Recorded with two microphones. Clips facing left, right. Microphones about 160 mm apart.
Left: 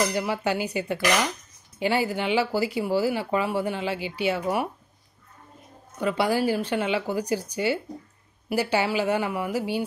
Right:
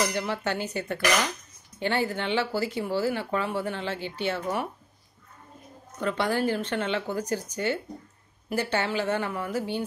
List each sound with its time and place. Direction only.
0.1 s speech: 10° left (ahead or behind)
5.9 s speech: 10° left (ahead or behind)